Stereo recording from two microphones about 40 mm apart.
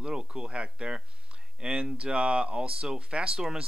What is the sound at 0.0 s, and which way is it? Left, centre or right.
Speech, right.